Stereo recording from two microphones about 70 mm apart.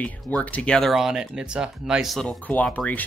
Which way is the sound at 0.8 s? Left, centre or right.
Centre.